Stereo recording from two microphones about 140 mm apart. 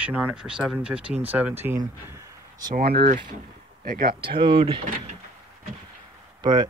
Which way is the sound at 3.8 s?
90° right.